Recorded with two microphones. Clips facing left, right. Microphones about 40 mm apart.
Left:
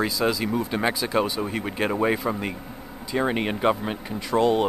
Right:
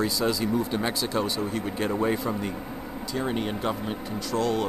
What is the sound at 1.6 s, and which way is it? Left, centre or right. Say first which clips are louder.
Speech: left 4 dB; left.